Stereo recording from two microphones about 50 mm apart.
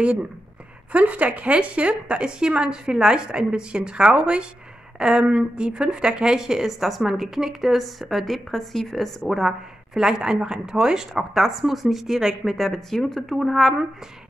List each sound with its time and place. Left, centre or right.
0.9 s a woman's voice: right; by 9.6 s centre
9.9 s speech: centre